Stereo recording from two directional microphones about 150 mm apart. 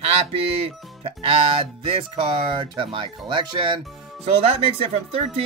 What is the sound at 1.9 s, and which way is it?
Speech, 35° right (ahead or behind).